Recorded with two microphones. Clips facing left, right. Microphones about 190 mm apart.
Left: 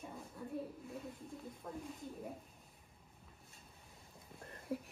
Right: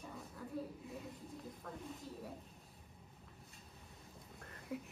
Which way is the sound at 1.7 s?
20° left (ahead or behind).